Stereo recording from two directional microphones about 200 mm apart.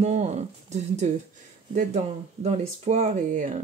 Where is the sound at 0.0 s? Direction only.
35° right (ahead or behind).